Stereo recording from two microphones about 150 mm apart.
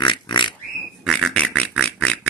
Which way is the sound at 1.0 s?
Centre (ahead or behind).